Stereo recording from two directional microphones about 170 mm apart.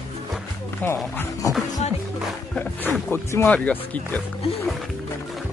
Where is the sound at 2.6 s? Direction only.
10° left (ahead or behind).